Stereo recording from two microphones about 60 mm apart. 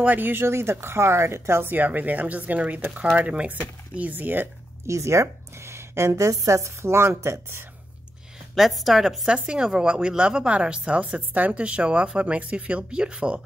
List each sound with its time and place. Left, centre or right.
0.0 s a woman's voice: right
4.8 s a woman's voice: right
8.5 s speech: centre
9.3 s a woman's voice: centre